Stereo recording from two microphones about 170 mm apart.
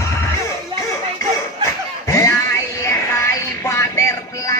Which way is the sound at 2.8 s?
15° left (ahead or behind).